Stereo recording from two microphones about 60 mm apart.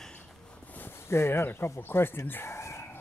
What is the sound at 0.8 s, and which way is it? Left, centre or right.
Speech, left.